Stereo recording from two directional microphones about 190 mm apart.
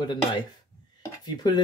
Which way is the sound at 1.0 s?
20° left (ahead or behind).